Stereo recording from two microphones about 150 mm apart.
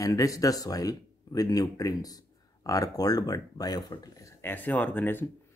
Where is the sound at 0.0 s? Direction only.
25° left (ahead or behind).